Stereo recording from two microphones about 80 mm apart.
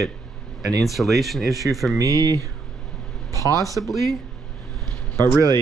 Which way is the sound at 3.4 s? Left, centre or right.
Right.